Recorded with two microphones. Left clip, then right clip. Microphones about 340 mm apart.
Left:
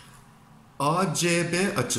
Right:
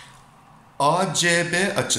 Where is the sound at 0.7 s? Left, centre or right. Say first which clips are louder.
Right 5 dB; centre.